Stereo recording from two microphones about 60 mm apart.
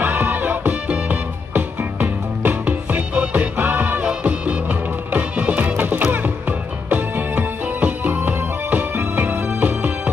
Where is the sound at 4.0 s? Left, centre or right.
Centre.